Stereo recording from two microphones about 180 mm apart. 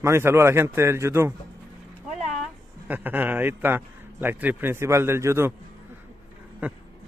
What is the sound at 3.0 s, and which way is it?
Speech, 10° right (ahead or behind).